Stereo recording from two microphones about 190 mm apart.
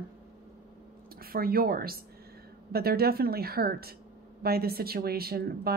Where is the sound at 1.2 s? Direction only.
50° right (ahead or behind).